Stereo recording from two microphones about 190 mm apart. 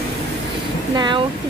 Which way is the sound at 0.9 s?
25° right (ahead or behind).